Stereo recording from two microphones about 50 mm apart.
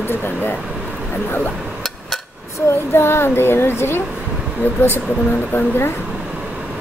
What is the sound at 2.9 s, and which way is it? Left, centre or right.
Speech, left.